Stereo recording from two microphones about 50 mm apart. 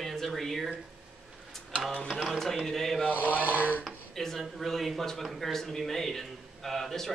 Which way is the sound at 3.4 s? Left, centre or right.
Right.